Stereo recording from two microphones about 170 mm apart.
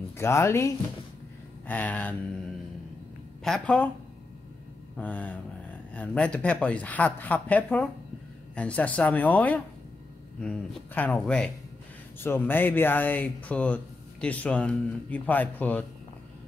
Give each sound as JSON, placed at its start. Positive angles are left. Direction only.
{"t": 0.2, "sound": "speech", "side_deg": 15}
{"t": 4.9, "sound": "speech", "side_deg": 10}